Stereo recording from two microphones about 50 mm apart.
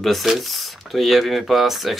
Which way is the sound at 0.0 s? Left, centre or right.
Centre.